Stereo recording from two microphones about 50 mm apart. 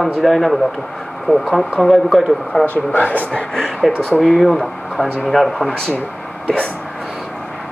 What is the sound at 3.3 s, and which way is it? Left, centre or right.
Speech, centre.